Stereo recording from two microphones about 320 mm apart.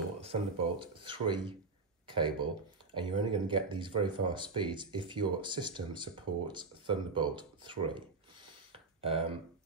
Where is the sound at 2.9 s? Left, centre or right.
Centre.